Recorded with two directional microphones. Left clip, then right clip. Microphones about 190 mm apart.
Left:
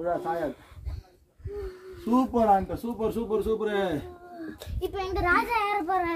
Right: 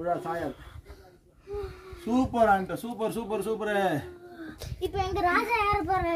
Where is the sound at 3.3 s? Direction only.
15° right (ahead or behind).